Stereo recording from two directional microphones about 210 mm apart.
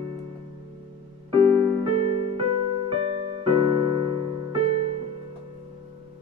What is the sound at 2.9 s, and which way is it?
Music, 25° right (ahead or behind).